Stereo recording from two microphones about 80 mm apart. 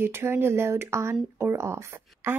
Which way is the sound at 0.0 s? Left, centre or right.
Right.